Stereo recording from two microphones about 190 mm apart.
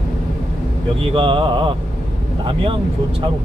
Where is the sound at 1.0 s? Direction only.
30° right (ahead or behind).